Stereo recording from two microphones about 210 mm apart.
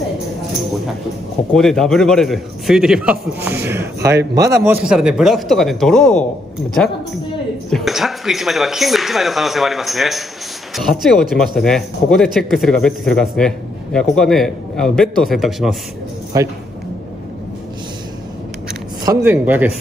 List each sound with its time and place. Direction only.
1.5 s speech: centre (ahead or behind); by 4.7 s 15° right (ahead or behind)
4.8 s speech: 5° right (ahead or behind)
7.7 s speech: centre (ahead or behind)
16.3 s speech: 15° right (ahead or behind)
19.0 s speech: 10° right (ahead or behind)